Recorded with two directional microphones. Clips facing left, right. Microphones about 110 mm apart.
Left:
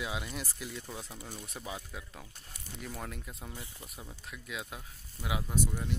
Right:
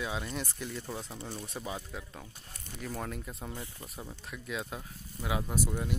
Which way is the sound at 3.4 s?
20° right (ahead or behind).